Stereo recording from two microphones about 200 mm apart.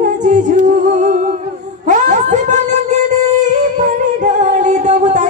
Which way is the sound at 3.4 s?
40° right (ahead or behind).